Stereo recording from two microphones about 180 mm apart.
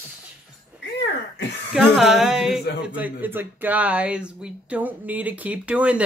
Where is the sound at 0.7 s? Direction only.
70° left (ahead or behind).